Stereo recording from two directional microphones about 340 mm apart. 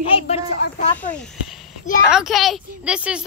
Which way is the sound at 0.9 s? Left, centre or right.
Centre.